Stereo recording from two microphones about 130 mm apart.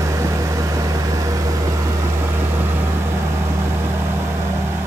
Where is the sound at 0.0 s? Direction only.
25° right (ahead or behind).